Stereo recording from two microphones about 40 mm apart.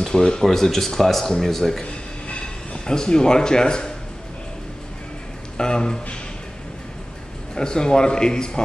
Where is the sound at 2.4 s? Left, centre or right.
Centre.